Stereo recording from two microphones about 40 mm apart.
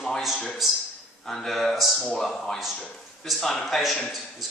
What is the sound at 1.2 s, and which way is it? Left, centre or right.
A man's voice, centre.